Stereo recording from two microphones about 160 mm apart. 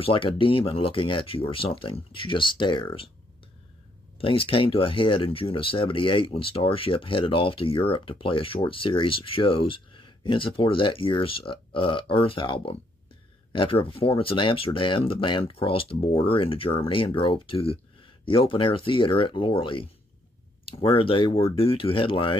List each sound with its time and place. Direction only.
0.0 s speech: 35° left (ahead or behind)
4.2 s speech: 35° left (ahead or behind)